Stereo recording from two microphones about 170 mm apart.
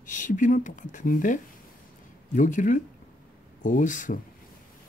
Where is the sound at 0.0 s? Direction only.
50° left (ahead or behind).